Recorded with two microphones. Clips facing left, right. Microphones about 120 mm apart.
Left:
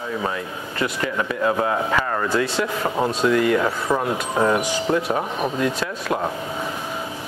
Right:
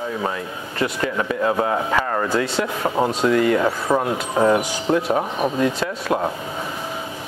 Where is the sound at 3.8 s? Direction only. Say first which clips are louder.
Right 2 dB; 25° right (ahead or behind).